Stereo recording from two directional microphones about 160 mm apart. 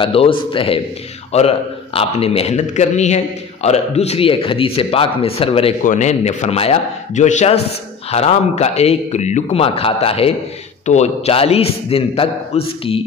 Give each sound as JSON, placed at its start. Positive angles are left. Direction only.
{"t": 0.0, "sound": "a man's voice", "side_deg": 35}